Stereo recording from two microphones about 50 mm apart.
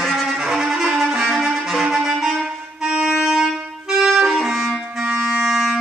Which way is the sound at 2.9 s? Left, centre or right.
Centre.